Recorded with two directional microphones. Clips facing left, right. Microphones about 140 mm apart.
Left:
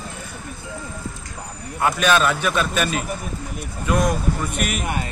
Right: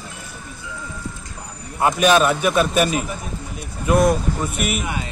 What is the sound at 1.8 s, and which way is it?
Speech, 15° right (ahead or behind).